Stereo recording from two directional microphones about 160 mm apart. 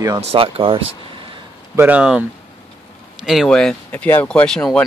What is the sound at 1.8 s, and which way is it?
Speech, 10° right (ahead or behind).